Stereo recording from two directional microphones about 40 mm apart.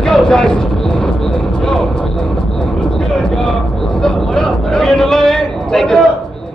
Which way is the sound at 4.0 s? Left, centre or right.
Centre.